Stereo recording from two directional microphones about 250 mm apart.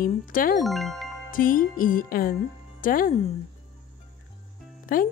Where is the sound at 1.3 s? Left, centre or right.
Left.